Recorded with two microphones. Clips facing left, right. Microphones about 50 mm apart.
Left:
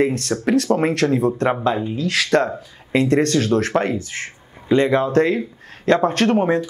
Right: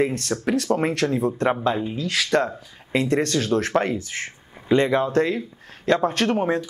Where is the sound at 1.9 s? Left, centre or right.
Centre.